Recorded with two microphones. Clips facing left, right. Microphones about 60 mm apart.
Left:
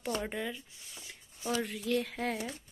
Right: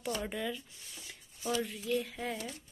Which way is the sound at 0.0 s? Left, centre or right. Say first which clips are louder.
Left 1 dB; left.